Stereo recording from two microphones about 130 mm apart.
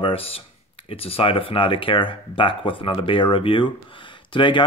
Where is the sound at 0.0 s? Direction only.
45° left (ahead or behind).